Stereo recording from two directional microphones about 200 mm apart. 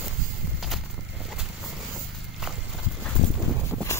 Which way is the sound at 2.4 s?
Centre (ahead or behind).